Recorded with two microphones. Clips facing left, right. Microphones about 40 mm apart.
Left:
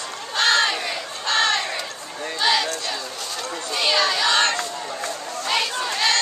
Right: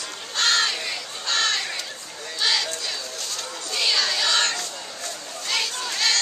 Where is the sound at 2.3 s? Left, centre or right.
Centre.